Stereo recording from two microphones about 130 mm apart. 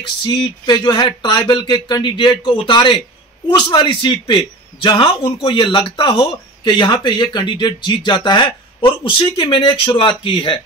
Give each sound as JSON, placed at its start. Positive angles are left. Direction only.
{"t": 0.2, "sound": "a man's voice", "side_deg": 35}